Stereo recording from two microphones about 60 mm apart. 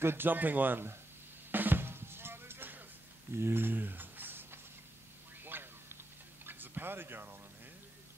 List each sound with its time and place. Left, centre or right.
0.0 s speech: right
1.5 s drum: right
3.3 s a sound: right